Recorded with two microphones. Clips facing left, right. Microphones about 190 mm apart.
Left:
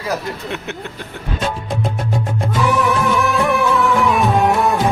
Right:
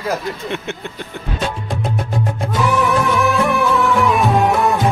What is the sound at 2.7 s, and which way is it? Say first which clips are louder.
Music: right 1 dB; centre (ahead or behind).